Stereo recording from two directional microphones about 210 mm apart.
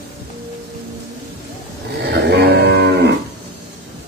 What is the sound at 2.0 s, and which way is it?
Moo, 50° right (ahead or behind).